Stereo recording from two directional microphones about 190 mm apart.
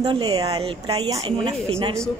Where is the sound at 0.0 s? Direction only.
25° right (ahead or behind).